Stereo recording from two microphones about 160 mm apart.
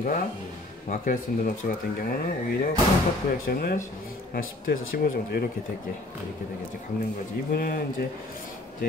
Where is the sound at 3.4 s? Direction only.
65° left (ahead or behind).